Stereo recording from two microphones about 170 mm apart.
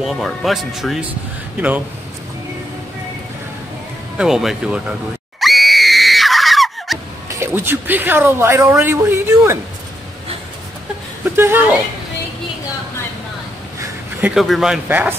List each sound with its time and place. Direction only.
0.0 s speech: centre (ahead or behind)
4.2 s speech: 5° right (ahead or behind)
5.4 s screaming: centre (ahead or behind)
7.2 s speech: 15° right (ahead or behind)
11.3 s speech: 15° right (ahead or behind)
13.7 s a sound: 20° right (ahead or behind)
14.3 s speech: centre (ahead or behind)